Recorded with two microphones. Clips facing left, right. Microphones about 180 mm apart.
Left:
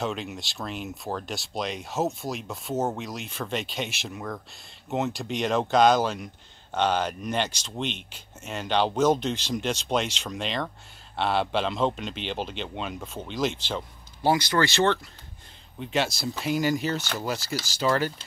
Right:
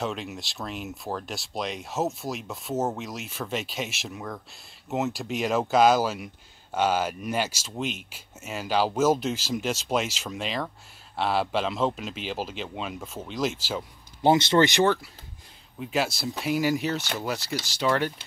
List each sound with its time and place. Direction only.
0.0 s speech: centre (ahead or behind)
14.2 s speech: 25° right (ahead or behind)
15.8 s speech: centre (ahead or behind)